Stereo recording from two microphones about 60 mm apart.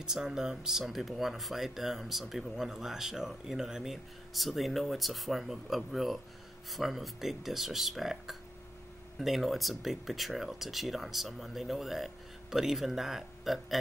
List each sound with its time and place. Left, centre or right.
0.0 s speech: centre